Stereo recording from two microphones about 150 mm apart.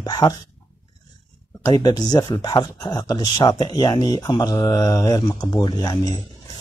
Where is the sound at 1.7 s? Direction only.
25° left (ahead or behind).